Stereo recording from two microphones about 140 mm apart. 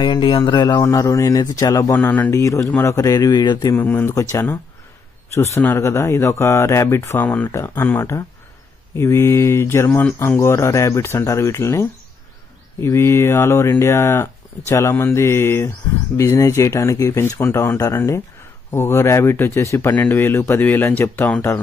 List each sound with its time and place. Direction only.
0.0 s speech: 35° left (ahead or behind)
2.0 s speech: 10° left (ahead or behind); by 3.7 s 30° left (ahead or behind)
3.7 s speech: 15° left (ahead or behind)